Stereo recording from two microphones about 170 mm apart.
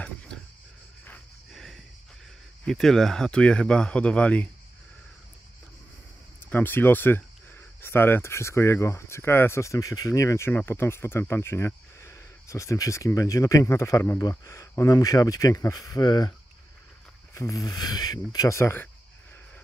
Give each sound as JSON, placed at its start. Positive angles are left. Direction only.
{"t": 0.0, "sound": "a sound", "side_deg": 5}
{"t": 2.6, "sound": "speech", "side_deg": 0}
{"t": 6.5, "sound": "speech", "side_deg": 10}